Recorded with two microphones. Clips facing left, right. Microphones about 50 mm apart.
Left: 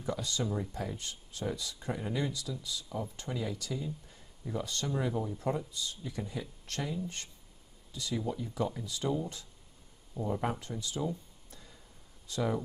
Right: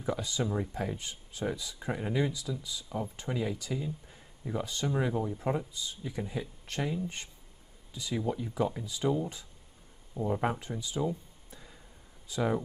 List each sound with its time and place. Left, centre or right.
0.0 s speech: centre